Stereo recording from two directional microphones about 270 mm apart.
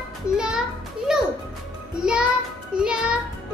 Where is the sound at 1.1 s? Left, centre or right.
Centre.